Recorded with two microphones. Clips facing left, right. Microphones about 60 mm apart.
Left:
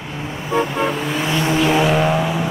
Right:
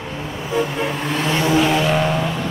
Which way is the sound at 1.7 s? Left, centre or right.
Centre.